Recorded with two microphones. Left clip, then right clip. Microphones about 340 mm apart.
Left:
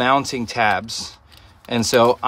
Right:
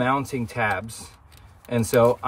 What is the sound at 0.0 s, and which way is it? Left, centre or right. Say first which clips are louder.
Speech: left 6 dB; left.